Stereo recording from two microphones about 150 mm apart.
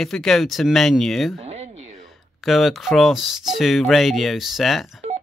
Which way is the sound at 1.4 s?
45° right (ahead or behind).